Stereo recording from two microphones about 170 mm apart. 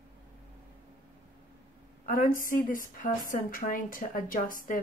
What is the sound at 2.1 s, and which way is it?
A woman's voice, 55° left (ahead or behind).